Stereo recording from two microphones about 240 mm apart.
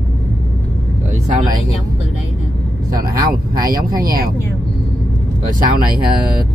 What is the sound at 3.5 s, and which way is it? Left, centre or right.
Speech, centre.